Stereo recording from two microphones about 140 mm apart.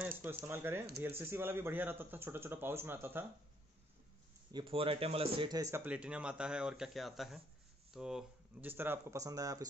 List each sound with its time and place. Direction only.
0.5 s speech: 15° right (ahead or behind)
4.5 s a man's voice: 35° right (ahead or behind)
5.5 s speech: 25° right (ahead or behind)
5.9 s speech: 10° right (ahead or behind); by 9.7 s 25° right (ahead or behind)